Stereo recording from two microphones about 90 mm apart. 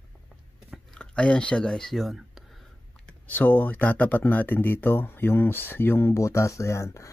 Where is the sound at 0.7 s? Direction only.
10° left (ahead or behind).